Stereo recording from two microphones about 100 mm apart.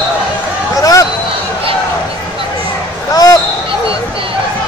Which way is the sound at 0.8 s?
35° left (ahead or behind).